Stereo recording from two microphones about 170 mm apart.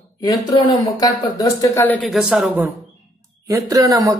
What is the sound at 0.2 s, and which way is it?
Speech, 25° left (ahead or behind).